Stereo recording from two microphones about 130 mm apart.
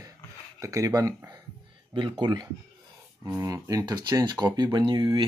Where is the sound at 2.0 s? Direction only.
40° right (ahead or behind).